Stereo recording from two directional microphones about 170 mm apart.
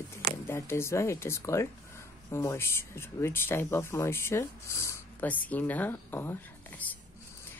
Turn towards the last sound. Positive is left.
turn(degrees=10)  # may be behind; listen again after turning